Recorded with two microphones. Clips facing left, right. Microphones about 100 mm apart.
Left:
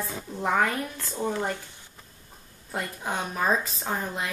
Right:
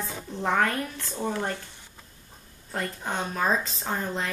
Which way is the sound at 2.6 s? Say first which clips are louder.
Even; 10° left (ahead or behind).